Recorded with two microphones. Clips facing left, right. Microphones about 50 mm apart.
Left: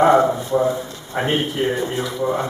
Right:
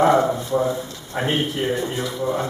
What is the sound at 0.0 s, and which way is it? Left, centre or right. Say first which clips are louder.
Speech: left 3 dB; centre.